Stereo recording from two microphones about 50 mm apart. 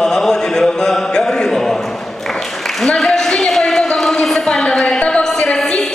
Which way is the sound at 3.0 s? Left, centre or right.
Centre.